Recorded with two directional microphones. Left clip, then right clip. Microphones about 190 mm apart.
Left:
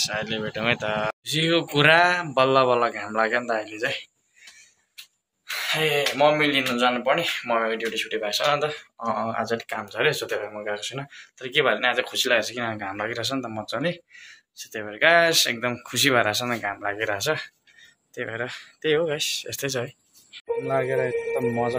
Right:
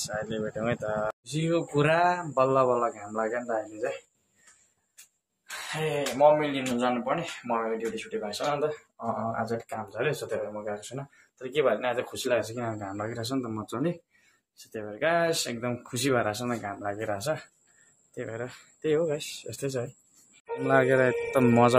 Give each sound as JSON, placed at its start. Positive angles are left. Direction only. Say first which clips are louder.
{"t": 0.0, "sound": "speech", "louder": "left 6 dB", "side_deg": -5}
{"t": 5.8, "sound": "speech", "louder": "left 3 dB", "side_deg": 0}
{"t": 20.7, "sound": "speech", "louder": "right 3 dB", "side_deg": -50}